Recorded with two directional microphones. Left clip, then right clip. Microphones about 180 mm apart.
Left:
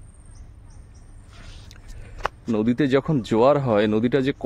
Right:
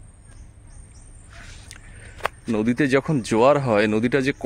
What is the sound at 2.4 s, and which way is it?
Speech, 5° left (ahead or behind).